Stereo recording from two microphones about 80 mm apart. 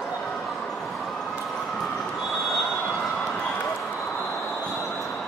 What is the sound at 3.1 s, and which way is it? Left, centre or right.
Run, centre.